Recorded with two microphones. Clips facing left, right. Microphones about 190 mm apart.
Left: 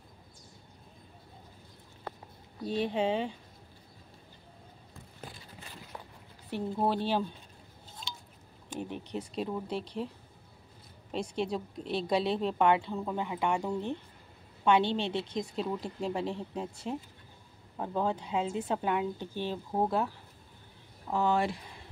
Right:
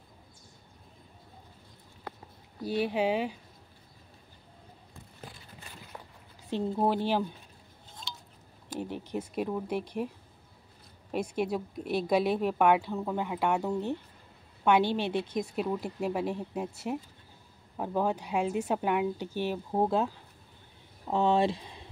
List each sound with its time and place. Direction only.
2.6 s a woman's voice: 5° right (ahead or behind)
6.5 s a woman's voice: 15° right (ahead or behind)
8.1 s a sound: centre (ahead or behind)
8.7 s a woman's voice: 15° right (ahead or behind)
21.1 s speech: 20° right (ahead or behind)